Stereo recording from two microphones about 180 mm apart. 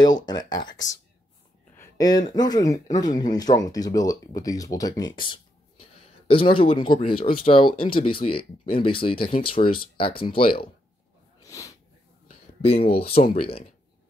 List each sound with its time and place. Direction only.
0.0 s speech: 25° left (ahead or behind)
11.4 s snort: 20° left (ahead or behind)
12.3 s a sound: 30° left (ahead or behind)